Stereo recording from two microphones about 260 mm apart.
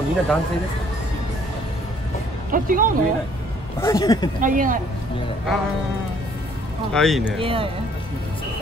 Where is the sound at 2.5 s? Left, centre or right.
Right.